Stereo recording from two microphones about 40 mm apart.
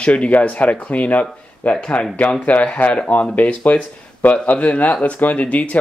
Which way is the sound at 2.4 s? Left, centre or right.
Left.